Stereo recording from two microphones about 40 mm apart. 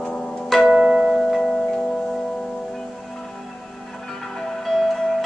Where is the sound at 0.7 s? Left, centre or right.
Right.